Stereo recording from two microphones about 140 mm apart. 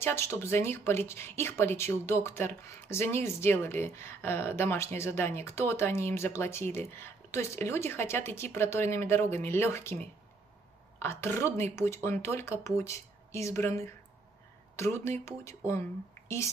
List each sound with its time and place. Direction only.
0.0 s speech: 15° left (ahead or behind)